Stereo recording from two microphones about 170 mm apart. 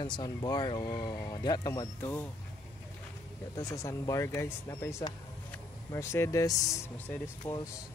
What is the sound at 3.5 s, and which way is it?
Speech, 20° left (ahead or behind).